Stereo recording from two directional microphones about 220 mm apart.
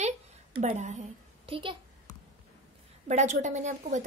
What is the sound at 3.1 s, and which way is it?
Speech, 35° right (ahead or behind).